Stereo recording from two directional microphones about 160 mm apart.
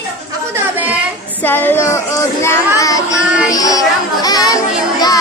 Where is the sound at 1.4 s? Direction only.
10° left (ahead or behind).